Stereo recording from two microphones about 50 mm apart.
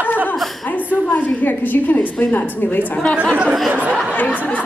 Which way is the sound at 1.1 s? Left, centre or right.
Left.